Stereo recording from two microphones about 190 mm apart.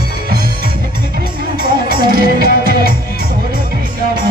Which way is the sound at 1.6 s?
50° right (ahead or behind).